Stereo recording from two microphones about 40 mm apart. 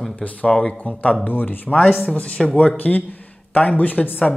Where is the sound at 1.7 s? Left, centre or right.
Left.